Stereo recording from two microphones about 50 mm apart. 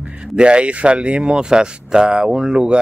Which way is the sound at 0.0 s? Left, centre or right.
Right.